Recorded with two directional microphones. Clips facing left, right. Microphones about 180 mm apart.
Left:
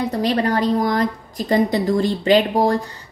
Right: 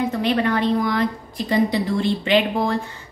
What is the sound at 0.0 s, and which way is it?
A woman's voice, 35° left (ahead or behind).